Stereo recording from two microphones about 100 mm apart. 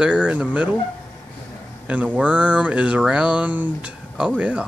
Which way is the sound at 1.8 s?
15° right (ahead or behind).